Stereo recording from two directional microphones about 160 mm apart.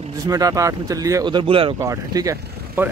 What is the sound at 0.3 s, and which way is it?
Speech, 20° right (ahead or behind).